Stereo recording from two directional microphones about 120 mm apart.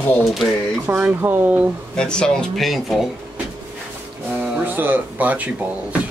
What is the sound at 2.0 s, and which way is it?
Speech, 5° left (ahead or behind).